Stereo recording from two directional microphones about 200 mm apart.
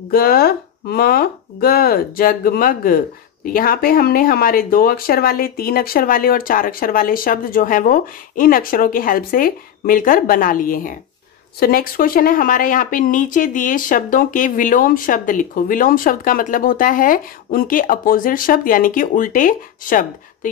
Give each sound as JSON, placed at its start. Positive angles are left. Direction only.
{"t": 0.1, "sound": "a woman's voice", "side_deg": 50}